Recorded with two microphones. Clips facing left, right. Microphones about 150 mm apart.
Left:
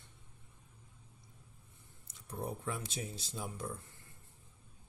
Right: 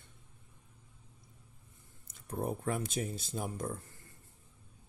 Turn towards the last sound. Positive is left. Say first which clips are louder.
# right 4 dB
turn(degrees=-50)  # may be behind; listen again after turning